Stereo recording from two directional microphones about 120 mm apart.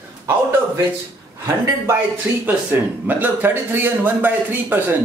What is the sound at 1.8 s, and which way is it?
Speech, 15° right (ahead or behind).